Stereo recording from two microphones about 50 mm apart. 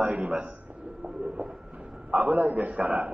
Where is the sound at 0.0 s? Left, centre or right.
Right.